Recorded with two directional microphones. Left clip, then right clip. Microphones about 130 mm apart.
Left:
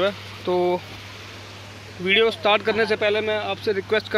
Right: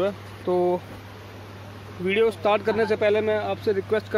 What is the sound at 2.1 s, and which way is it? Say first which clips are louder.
Speech: left 3 dB; 10° right (ahead or behind).